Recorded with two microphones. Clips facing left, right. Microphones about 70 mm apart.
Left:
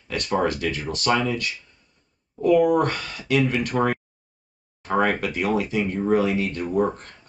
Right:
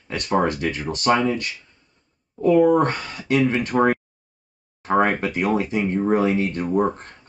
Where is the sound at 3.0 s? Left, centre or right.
Right.